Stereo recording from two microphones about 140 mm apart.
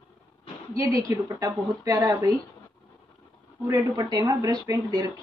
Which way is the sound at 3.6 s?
30° right (ahead or behind).